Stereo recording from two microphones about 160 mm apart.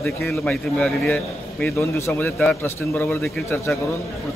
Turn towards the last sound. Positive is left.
turn(degrees=10)  # may be behind; listen again after turning